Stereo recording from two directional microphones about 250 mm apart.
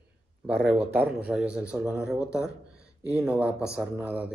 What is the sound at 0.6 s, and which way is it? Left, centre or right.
Speech, centre.